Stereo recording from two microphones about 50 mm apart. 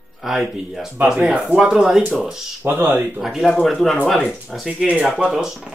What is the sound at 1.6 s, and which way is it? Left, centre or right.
Speech, centre.